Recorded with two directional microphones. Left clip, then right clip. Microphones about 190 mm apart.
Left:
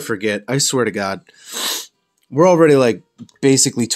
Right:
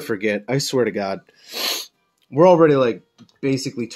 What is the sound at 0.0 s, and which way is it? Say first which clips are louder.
Speech: left 2 dB; 10° left (ahead or behind).